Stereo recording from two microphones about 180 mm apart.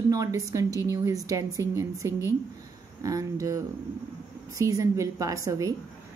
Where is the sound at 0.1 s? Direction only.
20° right (ahead or behind).